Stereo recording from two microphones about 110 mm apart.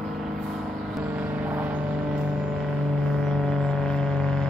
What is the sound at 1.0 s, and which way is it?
Vehicle, 10° right (ahead or behind).